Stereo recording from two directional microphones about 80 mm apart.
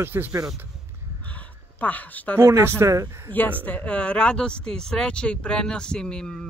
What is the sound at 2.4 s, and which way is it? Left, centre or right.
Speech, right.